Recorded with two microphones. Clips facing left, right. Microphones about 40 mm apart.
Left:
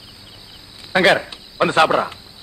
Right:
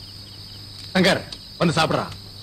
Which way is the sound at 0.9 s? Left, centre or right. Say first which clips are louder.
Left 5 dB; left.